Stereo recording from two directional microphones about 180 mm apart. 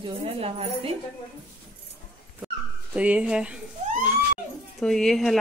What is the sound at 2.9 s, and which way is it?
Speech, 5° right (ahead or behind).